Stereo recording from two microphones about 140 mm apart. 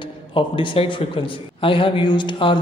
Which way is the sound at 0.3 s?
35° left (ahead or behind).